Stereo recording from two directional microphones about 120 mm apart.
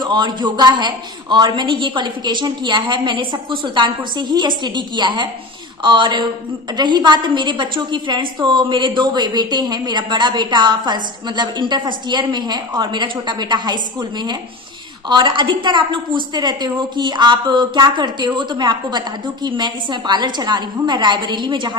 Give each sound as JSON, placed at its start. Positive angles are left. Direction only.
{"t": 0.0, "sound": "a woman's voice", "side_deg": -40}